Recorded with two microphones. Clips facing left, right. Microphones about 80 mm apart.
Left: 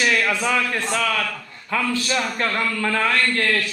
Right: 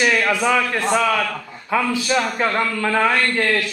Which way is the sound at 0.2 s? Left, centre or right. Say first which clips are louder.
Right 3 dB; centre.